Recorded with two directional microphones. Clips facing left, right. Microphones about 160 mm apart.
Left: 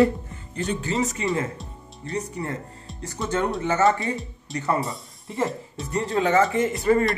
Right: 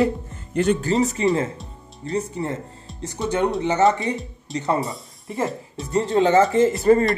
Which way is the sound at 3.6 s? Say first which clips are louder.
Right 1 dB; 20° right (ahead or behind).